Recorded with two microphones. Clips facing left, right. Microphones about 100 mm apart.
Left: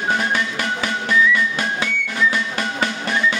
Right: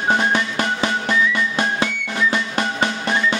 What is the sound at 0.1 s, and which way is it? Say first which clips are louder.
Music: right 3 dB; 25° right (ahead or behind).